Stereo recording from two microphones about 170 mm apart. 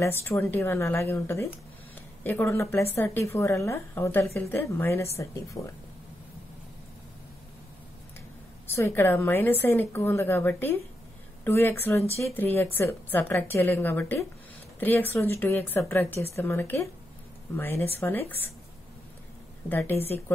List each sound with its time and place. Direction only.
0.0 s a woman's voice: 15° left (ahead or behind)
8.7 s a woman's voice: 15° left (ahead or behind)
19.7 s a woman's voice: 10° left (ahead or behind)